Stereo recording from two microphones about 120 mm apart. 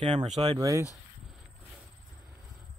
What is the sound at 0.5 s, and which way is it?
Speech, 25° right (ahead or behind).